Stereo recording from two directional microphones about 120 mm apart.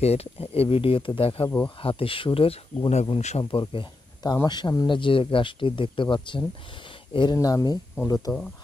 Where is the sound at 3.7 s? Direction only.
45° left (ahead or behind).